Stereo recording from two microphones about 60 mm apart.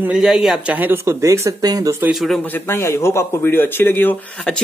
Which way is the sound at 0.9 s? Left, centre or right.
Right.